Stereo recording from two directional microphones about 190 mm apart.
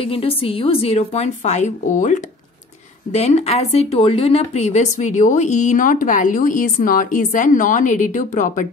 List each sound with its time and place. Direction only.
0.0 s speech: 30° left (ahead or behind)